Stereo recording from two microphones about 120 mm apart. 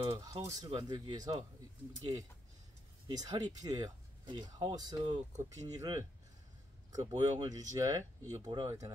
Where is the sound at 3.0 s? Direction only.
30° right (ahead or behind).